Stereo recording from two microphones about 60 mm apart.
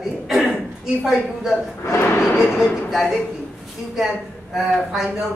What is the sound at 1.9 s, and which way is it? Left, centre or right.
Speech, left.